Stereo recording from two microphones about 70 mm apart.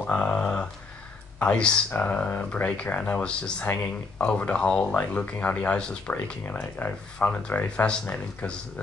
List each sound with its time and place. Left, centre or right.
0.0 s a sound: centre
1.4 s speech: centre
6.4 s speech: left